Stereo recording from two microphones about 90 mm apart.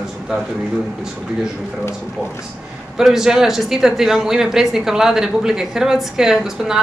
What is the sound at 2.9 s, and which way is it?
A woman's voice, 5° right (ahead or behind).